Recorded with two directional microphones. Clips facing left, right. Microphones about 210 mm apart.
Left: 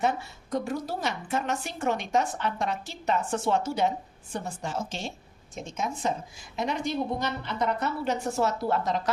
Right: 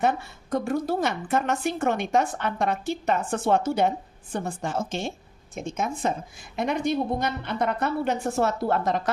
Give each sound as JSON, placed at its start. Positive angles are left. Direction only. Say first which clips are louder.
{"t": 0.0, "sound": "a woman's voice", "louder": "right 3 dB", "side_deg": -55}